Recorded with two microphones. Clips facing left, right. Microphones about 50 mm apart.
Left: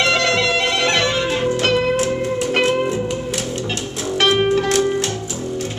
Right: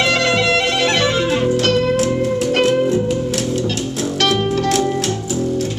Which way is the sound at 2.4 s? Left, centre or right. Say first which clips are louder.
Right 2 dB; centre.